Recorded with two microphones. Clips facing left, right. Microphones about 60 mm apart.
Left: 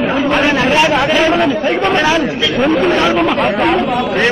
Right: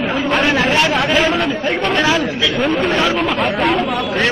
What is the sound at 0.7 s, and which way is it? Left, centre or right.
Speech, centre.